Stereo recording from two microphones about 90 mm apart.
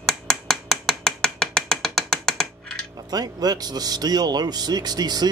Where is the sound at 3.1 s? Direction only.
45° right (ahead or behind).